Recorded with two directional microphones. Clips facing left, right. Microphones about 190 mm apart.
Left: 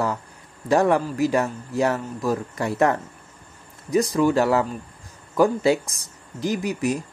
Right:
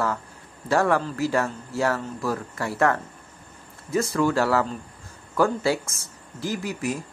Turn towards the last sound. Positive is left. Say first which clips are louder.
# left 4 dB
turn(degrees=20)  # may be behind; listen again after turning